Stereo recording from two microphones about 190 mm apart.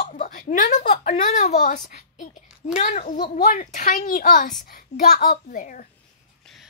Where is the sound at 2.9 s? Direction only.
40° left (ahead or behind).